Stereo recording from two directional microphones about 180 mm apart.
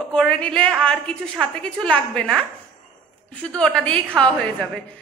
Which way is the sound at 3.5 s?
5° left (ahead or behind).